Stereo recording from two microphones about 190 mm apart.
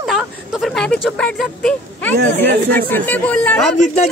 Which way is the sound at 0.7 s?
5° left (ahead or behind).